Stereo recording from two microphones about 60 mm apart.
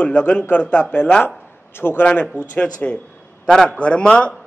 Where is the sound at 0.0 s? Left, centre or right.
Left.